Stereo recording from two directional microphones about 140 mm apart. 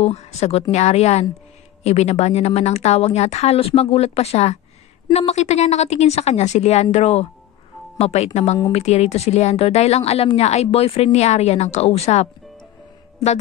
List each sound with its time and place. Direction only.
0.0 s a woman's voice: 50° left (ahead or behind)